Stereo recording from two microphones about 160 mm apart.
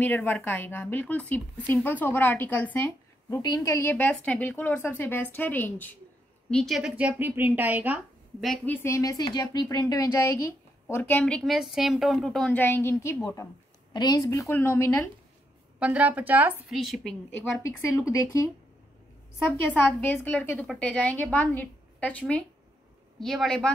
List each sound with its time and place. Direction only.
0.0 s speech: 10° left (ahead or behind)
6.5 s speech: centre (ahead or behind)
8.6 s a woman's voice: 15° left (ahead or behind)
15.8 s speech: 10° right (ahead or behind)
17.9 s speech: 20° left (ahead or behind)
19.5 s a woman's voice: 10° left (ahead or behind)